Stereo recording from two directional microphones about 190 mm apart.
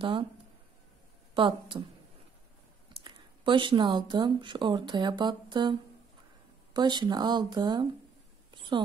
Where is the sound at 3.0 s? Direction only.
25° right (ahead or behind).